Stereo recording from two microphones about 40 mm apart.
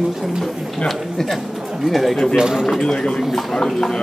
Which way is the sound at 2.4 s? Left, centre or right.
Centre.